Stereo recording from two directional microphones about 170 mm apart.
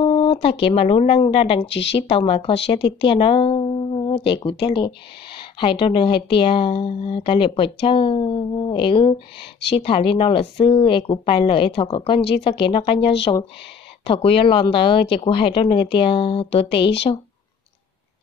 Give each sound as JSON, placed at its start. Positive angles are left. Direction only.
{"t": 0.0, "sound": "speech", "side_deg": 35}
{"t": 1.7, "sound": "speech", "side_deg": 90}
{"t": 2.0, "sound": "speech", "side_deg": 30}